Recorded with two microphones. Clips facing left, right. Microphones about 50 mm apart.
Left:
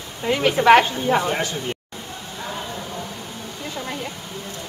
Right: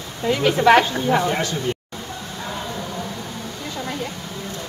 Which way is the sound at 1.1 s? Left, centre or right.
Centre.